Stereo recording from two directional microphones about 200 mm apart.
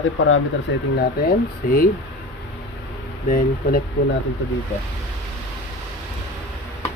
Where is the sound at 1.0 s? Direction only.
50° left (ahead or behind).